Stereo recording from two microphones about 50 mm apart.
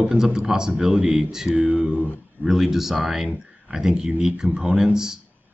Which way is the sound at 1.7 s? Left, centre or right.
Right.